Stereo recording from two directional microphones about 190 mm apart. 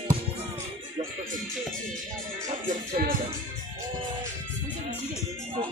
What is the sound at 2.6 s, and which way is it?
Music, 45° right (ahead or behind).